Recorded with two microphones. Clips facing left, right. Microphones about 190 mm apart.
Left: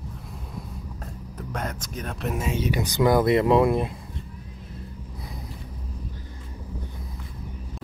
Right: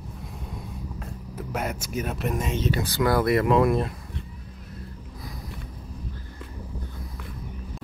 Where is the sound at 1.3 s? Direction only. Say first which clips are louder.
Right 2 dB; 10° right (ahead or behind); by 3.9 s 20° left (ahead or behind).